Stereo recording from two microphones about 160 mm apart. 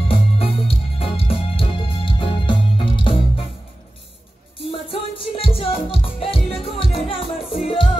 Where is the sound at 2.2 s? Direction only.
30° left (ahead or behind).